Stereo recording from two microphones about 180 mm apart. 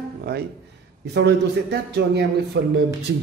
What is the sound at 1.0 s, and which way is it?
A man's voice, 70° right (ahead or behind).